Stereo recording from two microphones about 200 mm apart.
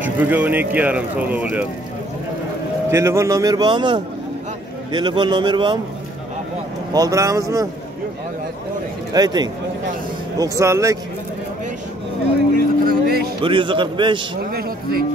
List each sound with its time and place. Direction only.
0.0 s speech: 10° right (ahead or behind)
2.9 s speech: 15° right (ahead or behind)
6.9 s speech: 15° right (ahead or behind)
9.1 s speech: 20° right (ahead or behind)
12.8 s a sound: 50° right (ahead or behind)
13.4 s speech: 25° right (ahead or behind)
14.5 s speech: 50° right (ahead or behind)